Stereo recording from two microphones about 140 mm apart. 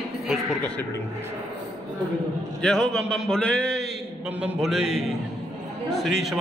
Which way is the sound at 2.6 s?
5° left (ahead or behind).